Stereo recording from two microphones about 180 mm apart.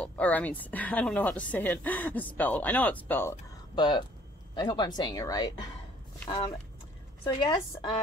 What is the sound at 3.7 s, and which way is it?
A woman's voice, 25° left (ahead or behind).